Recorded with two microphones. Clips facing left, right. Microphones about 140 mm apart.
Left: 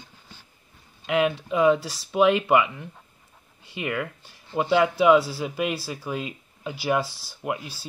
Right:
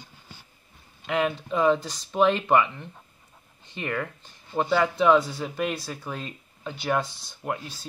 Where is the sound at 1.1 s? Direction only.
5° left (ahead or behind).